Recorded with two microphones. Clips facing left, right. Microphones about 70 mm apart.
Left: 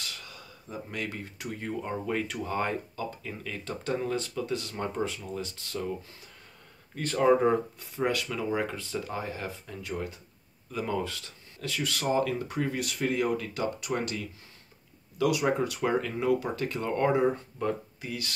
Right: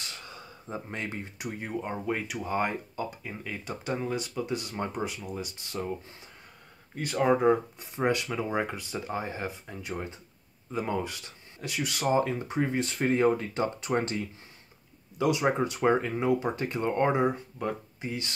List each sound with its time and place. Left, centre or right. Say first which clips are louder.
0.0 s speech: even; right
7.0 s speech: left 2 dB; centre
7.8 s speech: right 1 dB; right